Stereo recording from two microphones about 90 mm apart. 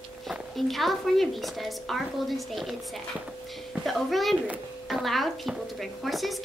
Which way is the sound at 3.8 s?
Centre (ahead or behind).